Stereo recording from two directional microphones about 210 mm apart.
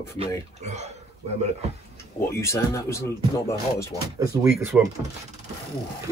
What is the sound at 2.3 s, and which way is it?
Speech, 15° left (ahead or behind).